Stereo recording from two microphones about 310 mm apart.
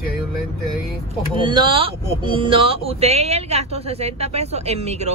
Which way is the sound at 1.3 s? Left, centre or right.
Centre.